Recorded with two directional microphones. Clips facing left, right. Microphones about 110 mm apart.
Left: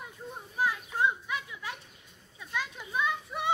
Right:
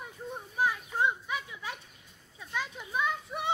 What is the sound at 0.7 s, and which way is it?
Children playing, 10° right (ahead or behind).